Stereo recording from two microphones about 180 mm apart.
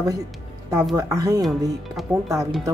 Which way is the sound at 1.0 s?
20° right (ahead or behind).